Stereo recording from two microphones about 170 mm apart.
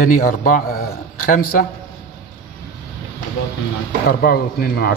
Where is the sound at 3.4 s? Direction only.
90° left.